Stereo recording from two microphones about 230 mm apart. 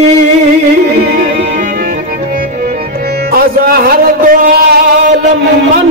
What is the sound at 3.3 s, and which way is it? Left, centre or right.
Music, right.